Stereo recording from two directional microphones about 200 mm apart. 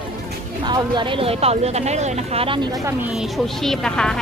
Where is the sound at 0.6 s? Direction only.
25° right (ahead or behind).